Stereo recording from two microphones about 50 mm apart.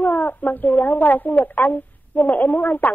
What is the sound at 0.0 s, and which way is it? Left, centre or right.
Speech, left.